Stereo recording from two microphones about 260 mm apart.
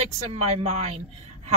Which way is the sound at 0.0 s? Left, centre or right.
Right.